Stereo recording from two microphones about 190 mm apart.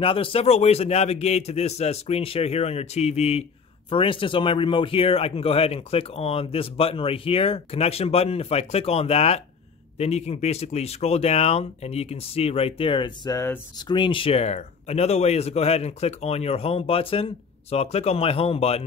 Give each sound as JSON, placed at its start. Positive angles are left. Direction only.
{"t": 0.0, "sound": "speech", "side_deg": 30}